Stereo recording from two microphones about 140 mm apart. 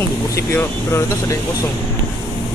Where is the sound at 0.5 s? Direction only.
20° left (ahead or behind).